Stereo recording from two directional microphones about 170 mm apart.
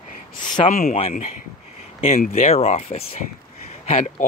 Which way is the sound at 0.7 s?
45° left (ahead or behind).